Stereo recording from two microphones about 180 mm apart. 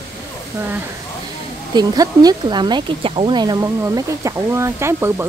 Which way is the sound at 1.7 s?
20° right (ahead or behind).